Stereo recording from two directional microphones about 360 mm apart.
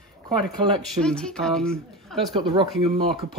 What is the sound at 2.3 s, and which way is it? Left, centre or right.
Speech, centre.